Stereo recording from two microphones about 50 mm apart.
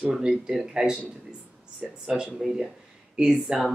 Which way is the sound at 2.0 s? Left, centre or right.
Centre.